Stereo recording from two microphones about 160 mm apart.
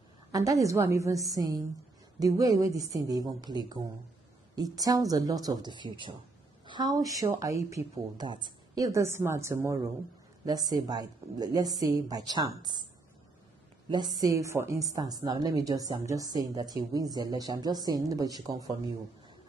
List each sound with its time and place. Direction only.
0.3 s a woman's voice: 20° right (ahead or behind)
13.8 s a woman's voice: 25° right (ahead or behind)